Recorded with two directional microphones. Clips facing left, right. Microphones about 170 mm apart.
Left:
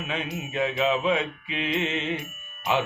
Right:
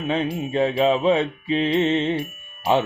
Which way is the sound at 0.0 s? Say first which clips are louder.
Right 8 dB; 30° right (ahead or behind).